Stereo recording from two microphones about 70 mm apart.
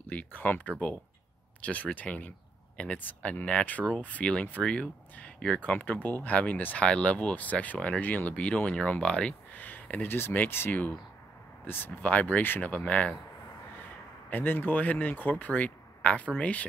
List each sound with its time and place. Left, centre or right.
0.1 s speech: left
9.5 s speech: left
14.3 s speech: left